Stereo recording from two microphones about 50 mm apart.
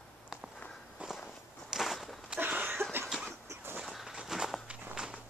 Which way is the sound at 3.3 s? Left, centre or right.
Right.